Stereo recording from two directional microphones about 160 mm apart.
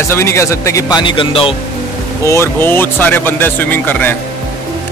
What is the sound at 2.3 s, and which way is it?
Speech, 15° left (ahead or behind).